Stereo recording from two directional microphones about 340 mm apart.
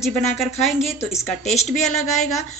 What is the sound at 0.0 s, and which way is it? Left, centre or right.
Speech, centre.